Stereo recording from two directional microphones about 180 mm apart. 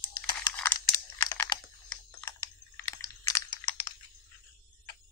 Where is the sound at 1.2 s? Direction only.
20° left (ahead or behind).